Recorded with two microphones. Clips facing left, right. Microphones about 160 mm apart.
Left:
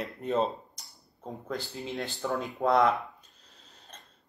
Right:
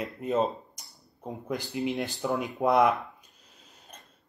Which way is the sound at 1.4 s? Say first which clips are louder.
Right 6 dB; 15° right (ahead or behind).